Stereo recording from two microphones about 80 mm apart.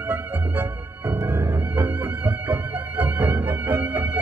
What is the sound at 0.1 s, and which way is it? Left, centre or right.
Music, right.